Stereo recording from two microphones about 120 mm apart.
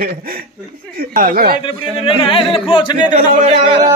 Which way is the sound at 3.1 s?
90° right.